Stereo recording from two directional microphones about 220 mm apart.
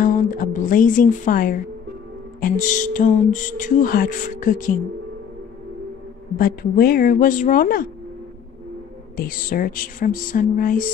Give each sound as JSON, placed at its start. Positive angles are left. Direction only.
{"t": 0.0, "sound": "a woman's voice", "side_deg": 40}
{"t": 2.4, "sound": "music", "side_deg": 35}
{"t": 6.3, "sound": "music", "side_deg": 40}
{"t": 9.1, "sound": "music", "side_deg": 40}